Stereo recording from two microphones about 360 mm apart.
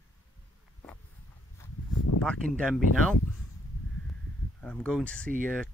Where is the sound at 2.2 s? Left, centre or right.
Centre.